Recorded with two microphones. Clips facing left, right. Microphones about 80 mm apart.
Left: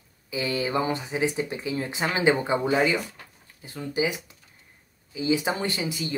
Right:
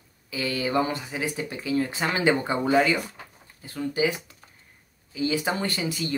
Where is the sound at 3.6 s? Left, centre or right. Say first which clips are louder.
Right 2 dB; left.